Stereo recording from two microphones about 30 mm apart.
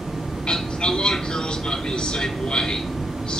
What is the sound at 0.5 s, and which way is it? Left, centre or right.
A man's voice, left.